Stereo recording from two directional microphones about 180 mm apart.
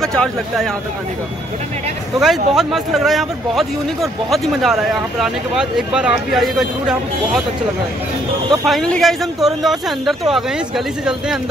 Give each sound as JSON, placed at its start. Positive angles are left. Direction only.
{"t": 0.0, "sound": "a man's voice", "side_deg": 5}
{"t": 2.1, "sound": "a man's voice", "side_deg": 0}
{"t": 8.6, "sound": "a man's voice", "side_deg": 5}